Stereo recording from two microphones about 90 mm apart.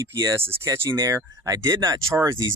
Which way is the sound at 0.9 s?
40° right (ahead or behind).